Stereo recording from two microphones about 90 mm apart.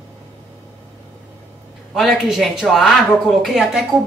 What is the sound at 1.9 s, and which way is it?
Speech, centre (ahead or behind).